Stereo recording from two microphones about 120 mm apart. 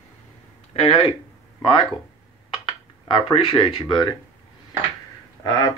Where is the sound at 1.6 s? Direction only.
45° left (ahead or behind).